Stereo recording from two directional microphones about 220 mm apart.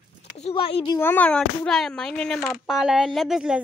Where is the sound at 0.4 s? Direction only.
25° left (ahead or behind).